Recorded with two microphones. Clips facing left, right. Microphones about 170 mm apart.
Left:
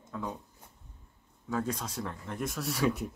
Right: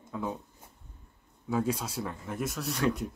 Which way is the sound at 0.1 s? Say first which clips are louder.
Right 3 dB; 5° right (ahead or behind).